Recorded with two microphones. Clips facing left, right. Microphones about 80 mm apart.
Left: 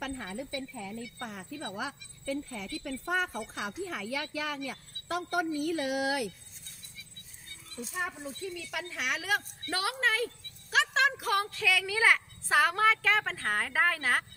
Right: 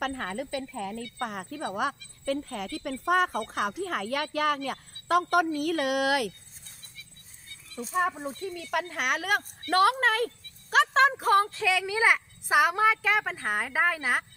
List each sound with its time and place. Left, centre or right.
0.0 s speech: right
7.7 s a woman's voice: right; by 14.2 s centre